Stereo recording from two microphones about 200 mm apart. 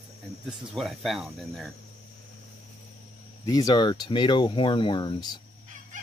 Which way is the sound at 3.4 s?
20° left (ahead or behind).